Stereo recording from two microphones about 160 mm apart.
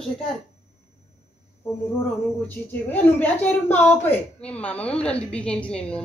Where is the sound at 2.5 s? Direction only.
10° left (ahead or behind).